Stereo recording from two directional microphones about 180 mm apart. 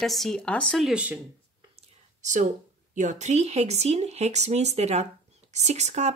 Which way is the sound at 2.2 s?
40° right (ahead or behind).